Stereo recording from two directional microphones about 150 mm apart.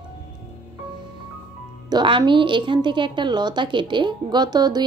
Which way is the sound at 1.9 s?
30° right (ahead or behind).